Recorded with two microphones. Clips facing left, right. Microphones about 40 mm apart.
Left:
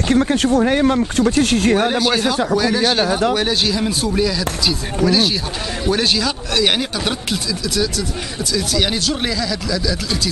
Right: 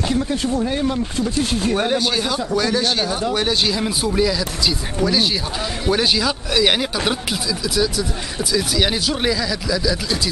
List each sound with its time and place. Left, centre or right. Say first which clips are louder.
0.1 s speech: left 9 dB; left
2.0 s speech: left 4 dB; centre
3.3 s speech: left 1 dB; centre